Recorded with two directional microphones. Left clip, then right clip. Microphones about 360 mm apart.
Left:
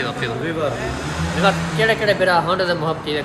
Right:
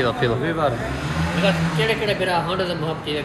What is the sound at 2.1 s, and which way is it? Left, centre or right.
Speech, centre.